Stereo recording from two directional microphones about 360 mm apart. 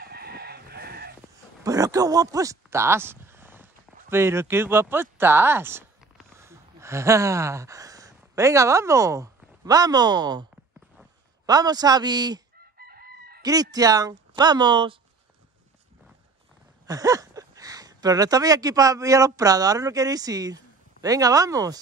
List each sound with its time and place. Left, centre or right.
0.0 s chicken: right
1.6 s a man's voice: centre
12.7 s chicken: right
13.4 s speech: centre
16.8 s speech: centre